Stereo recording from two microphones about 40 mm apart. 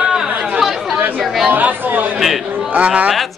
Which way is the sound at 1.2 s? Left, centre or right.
Centre.